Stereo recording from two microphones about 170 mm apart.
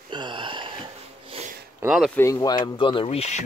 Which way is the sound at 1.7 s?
5° right (ahead or behind).